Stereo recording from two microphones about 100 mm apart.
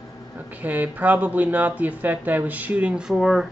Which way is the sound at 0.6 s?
15° right (ahead or behind).